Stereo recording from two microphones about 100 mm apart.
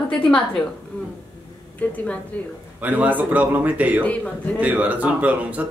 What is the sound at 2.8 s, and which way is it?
Speech, 15° right (ahead or behind).